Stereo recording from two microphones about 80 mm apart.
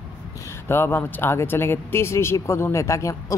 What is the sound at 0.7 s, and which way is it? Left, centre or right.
Speech, left.